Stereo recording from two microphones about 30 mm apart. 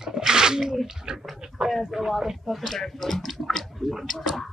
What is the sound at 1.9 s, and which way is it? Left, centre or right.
Speech, centre.